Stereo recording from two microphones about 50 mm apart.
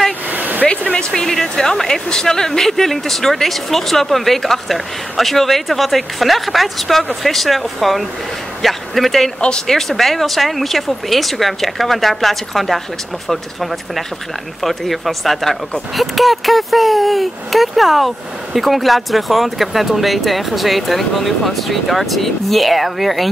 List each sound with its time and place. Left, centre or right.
0.3 s vehicle: right
0.9 s speech: centre